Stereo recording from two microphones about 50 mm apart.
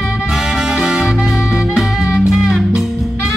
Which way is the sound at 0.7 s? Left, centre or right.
Centre.